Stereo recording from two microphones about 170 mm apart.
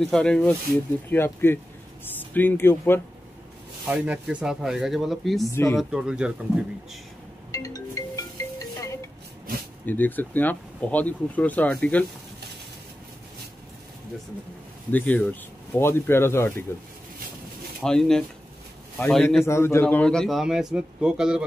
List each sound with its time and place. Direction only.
0.0 s a man's voice: 5° left (ahead or behind)
3.8 s a man's voice: 5° right (ahead or behind)
5.5 s speech: 15° left (ahead or behind)
5.8 s a man's voice: centre (ahead or behind)
7.5 s music: 20° left (ahead or behind)
9.8 s speech: 10° left (ahead or behind)
14.9 s speech: 10° left (ahead or behind)
17.8 s a man's voice: 5° left (ahead or behind)
19.4 s a man's voice: 15° left (ahead or behind); by 21.5 s 5° right (ahead or behind)